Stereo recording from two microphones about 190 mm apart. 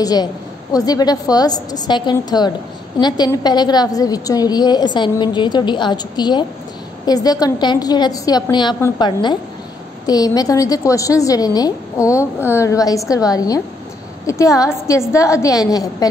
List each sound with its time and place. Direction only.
0.0 s a woman's voice: 20° left (ahead or behind)